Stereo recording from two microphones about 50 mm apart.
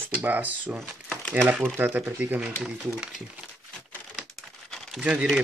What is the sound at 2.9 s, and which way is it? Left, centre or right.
Speech, centre.